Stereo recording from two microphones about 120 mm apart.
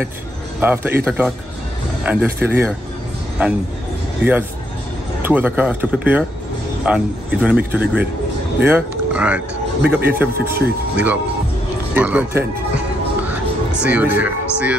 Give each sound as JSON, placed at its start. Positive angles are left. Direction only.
{"t": 0.6, "sound": "speech", "side_deg": -15}
{"t": 13.8, "sound": "speech", "side_deg": -15}